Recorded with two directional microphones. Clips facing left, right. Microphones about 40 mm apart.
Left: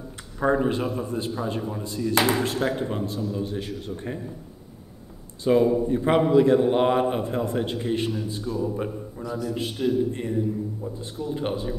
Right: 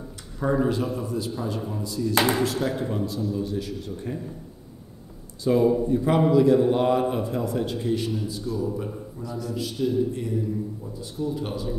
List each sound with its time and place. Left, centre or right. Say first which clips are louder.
0.4 s a man's voice: left 1 dB; left
5.4 s a man's voice: left 1 dB; left